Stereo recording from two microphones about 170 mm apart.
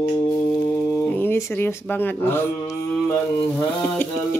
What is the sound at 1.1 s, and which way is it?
Speech, 10° left (ahead or behind).